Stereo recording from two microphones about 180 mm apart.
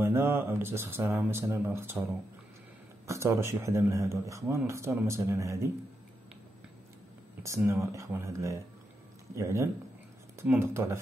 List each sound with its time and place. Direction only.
0.0 s speech: 15° right (ahead or behind)
3.1 s speech: 15° right (ahead or behind)
7.4 s speech: 15° right (ahead or behind)